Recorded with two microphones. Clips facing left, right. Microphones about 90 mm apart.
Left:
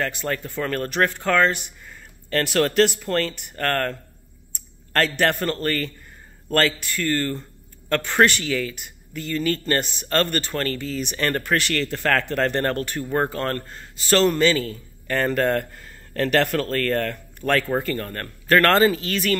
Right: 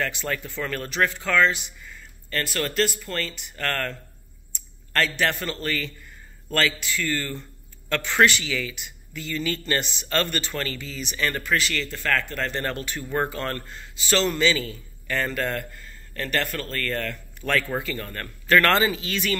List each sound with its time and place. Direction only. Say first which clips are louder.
0.0 s a man's voice: left 2 dB; 35° left (ahead or behind)
2.2 s a man's voice: left 7 dB; 70° left (ahead or behind); by 13.0 s 50° left (ahead or behind)
13.1 s a man's voice: left 3 dB; 40° left (ahead or behind)
17.4 s speech: left 3 dB; 25° left (ahead or behind)
17.7 s a man's voice: left 5 dB; 45° left (ahead or behind)